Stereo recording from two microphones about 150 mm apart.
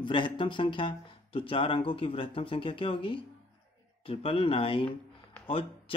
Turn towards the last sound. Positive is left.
turn(degrees=40)  # may be behind; listen again after turning